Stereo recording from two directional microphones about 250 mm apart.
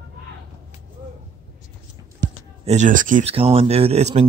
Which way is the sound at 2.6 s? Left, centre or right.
Right.